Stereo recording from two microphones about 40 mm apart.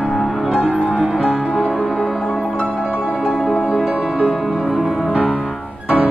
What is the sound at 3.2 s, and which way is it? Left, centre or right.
Music, centre.